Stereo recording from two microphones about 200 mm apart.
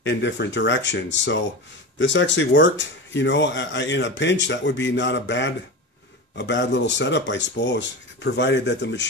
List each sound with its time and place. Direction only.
0.0 s speech: 65° left (ahead or behind)